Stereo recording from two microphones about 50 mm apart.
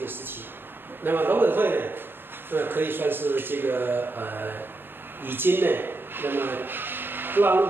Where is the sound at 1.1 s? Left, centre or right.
Right.